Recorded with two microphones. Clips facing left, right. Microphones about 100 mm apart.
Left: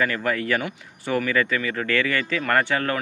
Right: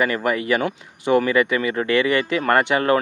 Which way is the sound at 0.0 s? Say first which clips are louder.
Right 3 dB; 15° right (ahead or behind).